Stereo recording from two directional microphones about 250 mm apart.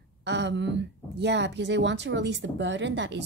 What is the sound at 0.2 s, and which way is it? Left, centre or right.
Speech, right.